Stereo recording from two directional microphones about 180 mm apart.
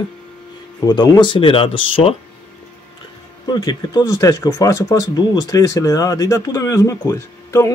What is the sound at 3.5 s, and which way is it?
Speech, 20° left (ahead or behind).